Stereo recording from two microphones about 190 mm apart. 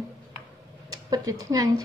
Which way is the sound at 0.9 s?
20° right (ahead or behind).